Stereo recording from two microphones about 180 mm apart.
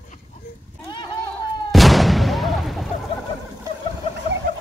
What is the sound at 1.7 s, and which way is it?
Artillery fire, centre (ahead or behind).